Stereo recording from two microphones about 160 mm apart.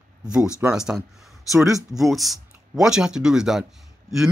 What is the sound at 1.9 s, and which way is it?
Speech, centre (ahead or behind).